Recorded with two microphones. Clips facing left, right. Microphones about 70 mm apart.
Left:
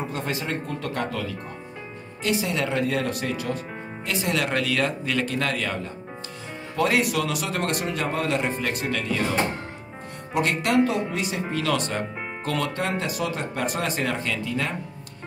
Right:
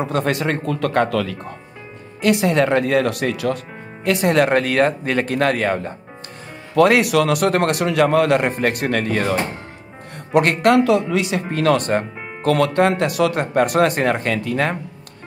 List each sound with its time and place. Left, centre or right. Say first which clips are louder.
0.0 s speech: right 9 dB; right
6.7 s speech: right 9 dB; right
10.8 s speech: right 6 dB; right
11.5 s speech: right 9 dB; right